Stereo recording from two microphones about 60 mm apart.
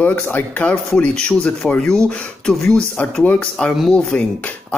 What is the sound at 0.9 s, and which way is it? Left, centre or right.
Speech, centre.